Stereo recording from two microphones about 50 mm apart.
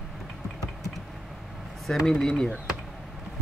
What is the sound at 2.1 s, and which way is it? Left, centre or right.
Speech, centre.